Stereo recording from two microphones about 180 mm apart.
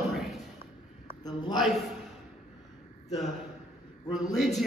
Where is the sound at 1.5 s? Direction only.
Centre (ahead or behind).